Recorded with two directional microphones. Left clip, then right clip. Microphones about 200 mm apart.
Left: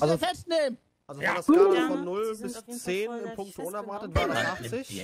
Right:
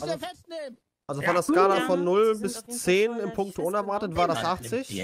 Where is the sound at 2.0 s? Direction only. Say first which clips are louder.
Right 9 dB; 50° right (ahead or behind).